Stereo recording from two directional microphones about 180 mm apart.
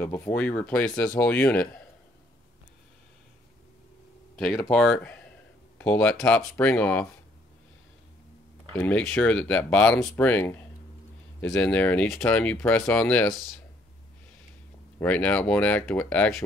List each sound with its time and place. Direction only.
0.0 s speech: 10° left (ahead or behind)
4.5 s speech: 5° left (ahead or behind)
8.7 s speech: 5° left (ahead or behind)
15.0 s speech: 10° left (ahead or behind)